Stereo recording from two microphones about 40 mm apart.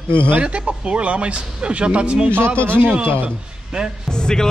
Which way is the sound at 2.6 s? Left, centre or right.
Right.